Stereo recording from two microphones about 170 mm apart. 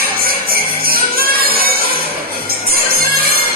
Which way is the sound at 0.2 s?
60° right (ahead or behind).